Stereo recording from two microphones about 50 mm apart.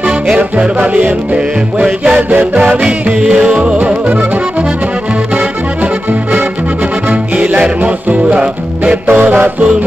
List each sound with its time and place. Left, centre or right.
0.3 s music: right
7.1 s music: right
9.0 s music: right